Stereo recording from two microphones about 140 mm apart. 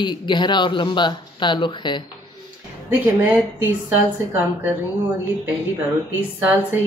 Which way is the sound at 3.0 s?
20° right (ahead or behind).